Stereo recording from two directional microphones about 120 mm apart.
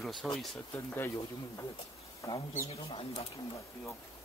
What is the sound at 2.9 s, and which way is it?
Speech, 55° left (ahead or behind).